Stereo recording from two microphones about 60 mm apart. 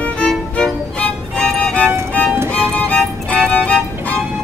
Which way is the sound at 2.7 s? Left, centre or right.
Centre.